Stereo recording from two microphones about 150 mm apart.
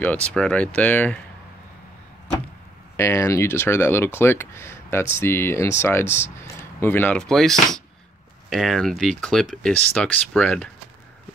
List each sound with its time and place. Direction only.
0.0 s speech: 10° left (ahead or behind)
3.0 s speech: 20° left (ahead or behind)